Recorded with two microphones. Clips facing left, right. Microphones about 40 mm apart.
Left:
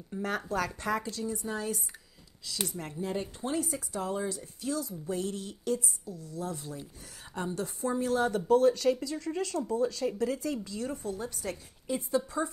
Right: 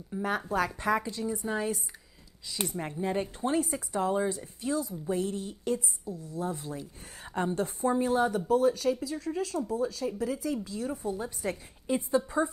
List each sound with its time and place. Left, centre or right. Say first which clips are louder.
0.2 s speech: right 3 dB; centre
3.0 s speech: right 3 dB; right
8.3 s speech: left 1 dB; centre; by 12.2 s right